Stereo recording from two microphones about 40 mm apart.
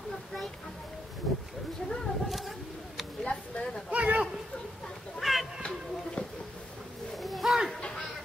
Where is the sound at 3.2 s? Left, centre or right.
Left.